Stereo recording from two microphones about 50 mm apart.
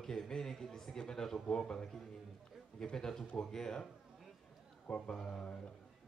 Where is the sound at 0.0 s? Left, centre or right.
Centre.